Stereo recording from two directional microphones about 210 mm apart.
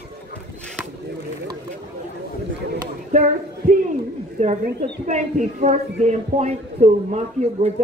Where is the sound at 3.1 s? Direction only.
35° right (ahead or behind).